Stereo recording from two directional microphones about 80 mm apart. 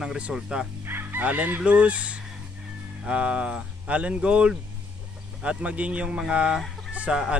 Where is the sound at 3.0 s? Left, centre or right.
Centre.